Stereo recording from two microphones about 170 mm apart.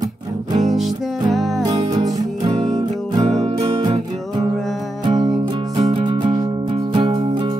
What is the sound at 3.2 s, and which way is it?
Music, 40° right (ahead or behind).